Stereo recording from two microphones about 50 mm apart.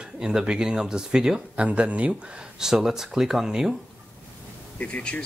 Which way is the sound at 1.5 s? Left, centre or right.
Right.